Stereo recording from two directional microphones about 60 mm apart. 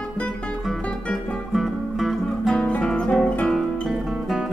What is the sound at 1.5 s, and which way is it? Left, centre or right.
Music, centre.